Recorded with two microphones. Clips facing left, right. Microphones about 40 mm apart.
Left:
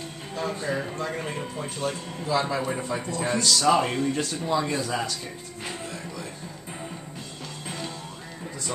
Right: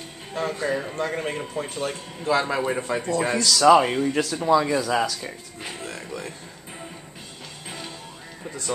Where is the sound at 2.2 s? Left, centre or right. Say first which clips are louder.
Right 3 dB; right.